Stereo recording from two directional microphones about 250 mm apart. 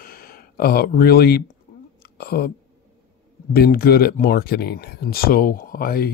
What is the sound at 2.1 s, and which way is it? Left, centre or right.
Speech, left.